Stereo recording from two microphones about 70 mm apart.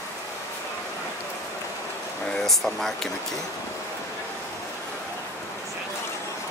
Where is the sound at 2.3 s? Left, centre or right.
Centre.